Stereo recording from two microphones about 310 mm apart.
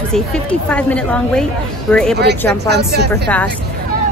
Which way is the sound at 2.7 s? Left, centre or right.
Right.